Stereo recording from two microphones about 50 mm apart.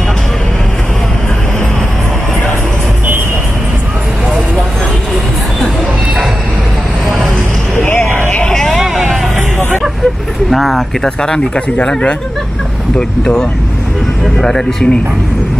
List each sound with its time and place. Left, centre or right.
8.0 s vehicle: left
8.5 s hubbub: centre
10.5 s speech: centre
11.2 s speech: centre
13.2 s speech: centre